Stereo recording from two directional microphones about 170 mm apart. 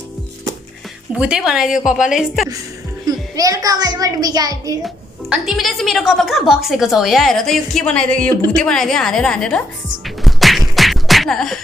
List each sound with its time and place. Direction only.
1.1 s a woman's voice: 5° right (ahead or behind)
3.1 s a woman's voice: 20° right (ahead or behind)
4.8 s a woman's voice: centre (ahead or behind)
10.0 s music: centre (ahead or behind)